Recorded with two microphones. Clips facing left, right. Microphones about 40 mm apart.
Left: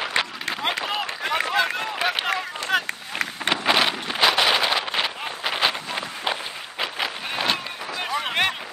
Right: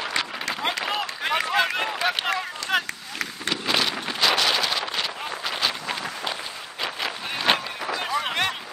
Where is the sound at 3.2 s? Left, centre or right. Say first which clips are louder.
Left 4 dB; left.